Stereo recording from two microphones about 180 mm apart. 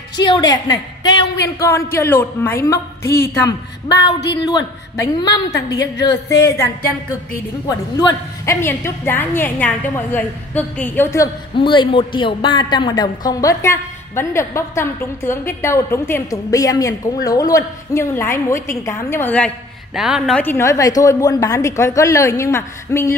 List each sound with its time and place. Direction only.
0.2 s a woman's voice: 25° left (ahead or behind)
11.5 s a woman's voice: 25° left (ahead or behind); by 19.5 s 10° left (ahead or behind)
20.0 s a woman's voice: centre (ahead or behind); by 23.1 s 15° left (ahead or behind)